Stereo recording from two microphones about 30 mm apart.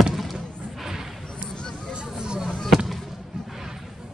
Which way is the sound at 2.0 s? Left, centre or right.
Right.